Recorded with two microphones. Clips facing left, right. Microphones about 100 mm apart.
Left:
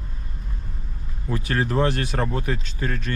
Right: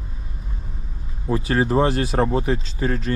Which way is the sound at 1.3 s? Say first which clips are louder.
Right 5 dB; 25° right (ahead or behind).